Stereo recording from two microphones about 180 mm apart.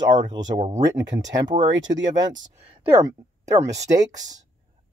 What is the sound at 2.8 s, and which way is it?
Speech, 15° right (ahead or behind).